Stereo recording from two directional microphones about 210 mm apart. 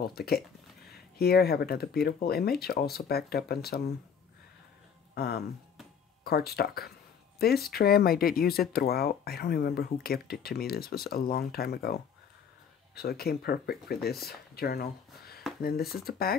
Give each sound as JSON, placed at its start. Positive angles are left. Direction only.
{"t": 0.0, "sound": "speech", "side_deg": 45}
{"t": 5.1, "sound": "speech", "side_deg": 45}